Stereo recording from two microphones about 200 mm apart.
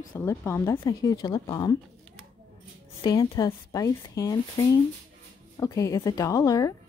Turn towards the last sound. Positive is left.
turn(degrees=15)  # may be behind; listen again after turning